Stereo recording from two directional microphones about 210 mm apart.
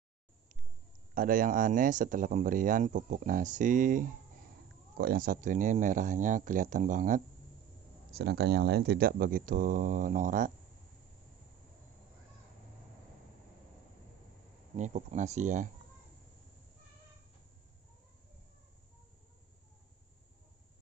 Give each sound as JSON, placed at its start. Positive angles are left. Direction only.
{"t": 1.1, "sound": "speech", "side_deg": -40}
{"t": 8.1, "sound": "speech", "side_deg": -50}
{"t": 14.8, "sound": "speech", "side_deg": -35}